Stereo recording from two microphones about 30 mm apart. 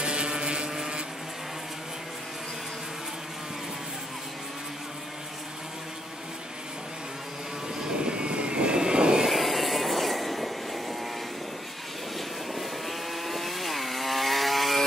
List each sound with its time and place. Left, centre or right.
0.0 s vehicle: right
8.0 s vehicle: right
9.3 s vehicle: centre
12.5 s chainsaw: centre